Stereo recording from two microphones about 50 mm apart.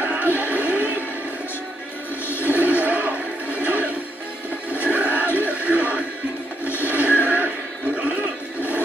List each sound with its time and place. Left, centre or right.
0.0 s music: right
2.2 s music: left
2.5 s music: right
6.8 s a sound: right
7.2 s music: right